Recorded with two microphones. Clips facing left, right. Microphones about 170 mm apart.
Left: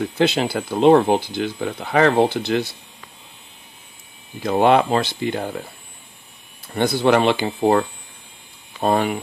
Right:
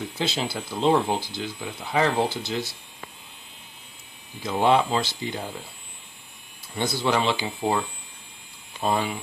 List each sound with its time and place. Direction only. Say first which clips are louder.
0.0 s speech: left 9 dB; 60° left (ahead or behind)
4.4 s speech: left 5 dB; 60° left (ahead or behind)
6.7 s speech: left 8 dB; 60° left (ahead or behind)
8.8 s speech: left 6 dB; 60° left (ahead or behind)